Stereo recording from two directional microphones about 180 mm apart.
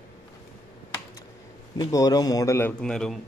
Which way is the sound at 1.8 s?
20° left (ahead or behind).